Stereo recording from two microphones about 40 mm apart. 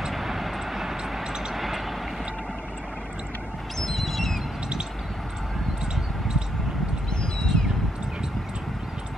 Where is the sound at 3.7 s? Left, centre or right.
Centre.